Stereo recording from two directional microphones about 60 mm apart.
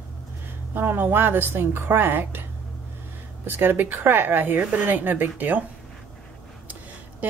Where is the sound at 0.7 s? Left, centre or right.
Right.